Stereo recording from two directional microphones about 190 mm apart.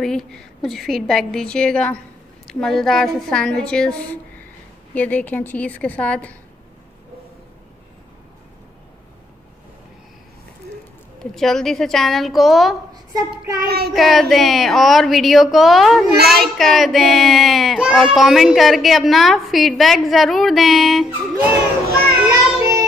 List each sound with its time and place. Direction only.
0.0 s a child's voice: 5° left (ahead or behind)
11.3 s a child's voice: centre (ahead or behind)
13.1 s child singing: 15° right (ahead or behind)
13.7 s child singing: 55° right (ahead or behind)
13.9 s a child's voice: centre (ahead or behind)
21.8 s music: 55° right (ahead or behind)
22.6 s child singing: 15° right (ahead or behind)